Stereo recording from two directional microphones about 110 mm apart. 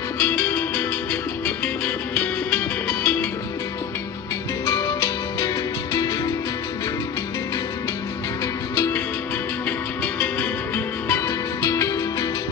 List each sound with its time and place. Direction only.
0.2 s music: 15° left (ahead or behind)
2.1 s music: 10° left (ahead or behind)
4.6 s music: 35° left (ahead or behind)
9.7 s music: 10° left (ahead or behind)
11.1 s music: 25° left (ahead or behind)